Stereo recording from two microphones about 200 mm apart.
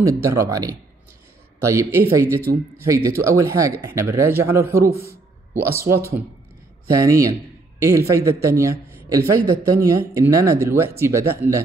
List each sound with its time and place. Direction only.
0.0 s a man's voice: 15° right (ahead or behind)